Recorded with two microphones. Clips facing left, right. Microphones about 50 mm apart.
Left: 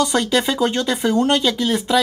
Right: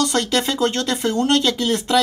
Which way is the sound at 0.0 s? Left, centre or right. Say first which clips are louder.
Left 2 dB; centre.